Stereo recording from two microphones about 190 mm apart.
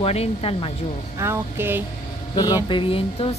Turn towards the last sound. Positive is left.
turn(degrees=30)  # may be behind; listen again after turning